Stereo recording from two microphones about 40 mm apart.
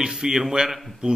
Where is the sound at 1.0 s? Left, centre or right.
Right.